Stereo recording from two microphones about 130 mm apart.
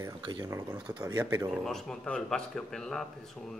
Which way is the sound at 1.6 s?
5° left (ahead or behind).